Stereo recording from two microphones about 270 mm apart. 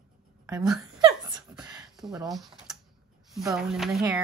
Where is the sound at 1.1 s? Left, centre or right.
Centre.